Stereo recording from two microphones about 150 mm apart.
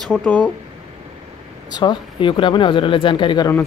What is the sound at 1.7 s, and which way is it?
Speech, 30° left (ahead or behind).